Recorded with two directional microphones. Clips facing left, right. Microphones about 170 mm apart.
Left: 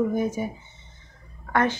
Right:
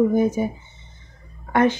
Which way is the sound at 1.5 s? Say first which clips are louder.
Right 5 dB; 15° right (ahead or behind).